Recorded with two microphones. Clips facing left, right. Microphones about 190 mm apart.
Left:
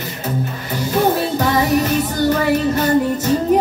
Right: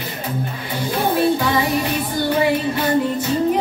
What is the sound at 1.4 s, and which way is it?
Music, 45° left (ahead or behind).